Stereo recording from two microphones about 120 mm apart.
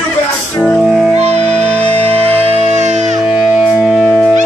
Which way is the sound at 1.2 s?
65° right (ahead or behind).